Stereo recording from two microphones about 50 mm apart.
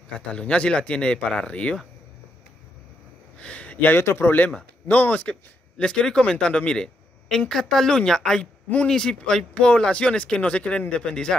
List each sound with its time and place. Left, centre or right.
0.1 s speech: left
3.3 s a sound: left
4.0 s speech: left
5.3 s speech: centre